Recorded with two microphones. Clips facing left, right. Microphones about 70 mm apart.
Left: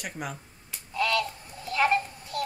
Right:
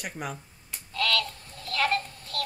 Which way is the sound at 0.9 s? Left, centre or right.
Centre.